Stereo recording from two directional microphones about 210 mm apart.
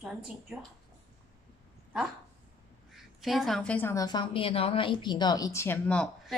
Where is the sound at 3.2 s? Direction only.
Centre (ahead or behind).